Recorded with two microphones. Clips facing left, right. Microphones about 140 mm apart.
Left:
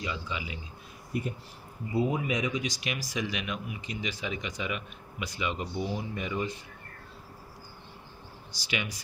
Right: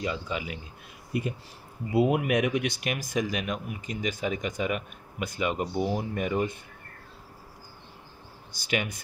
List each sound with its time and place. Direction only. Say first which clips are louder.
0.0 s speech: right 4 dB; 45° right (ahead or behind)
1.1 s speech: right 3 dB; 85° right; by 6.6 s 55° right (ahead or behind)
8.5 s speech: right 5 dB; 50° right (ahead or behind)